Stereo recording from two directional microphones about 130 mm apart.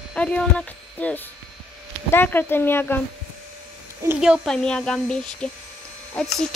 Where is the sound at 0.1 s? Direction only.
10° left (ahead or behind).